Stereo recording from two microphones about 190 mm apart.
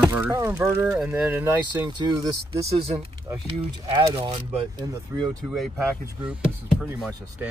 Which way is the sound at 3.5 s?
25° right (ahead or behind).